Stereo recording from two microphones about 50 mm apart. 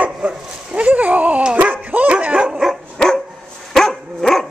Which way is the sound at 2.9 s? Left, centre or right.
Centre.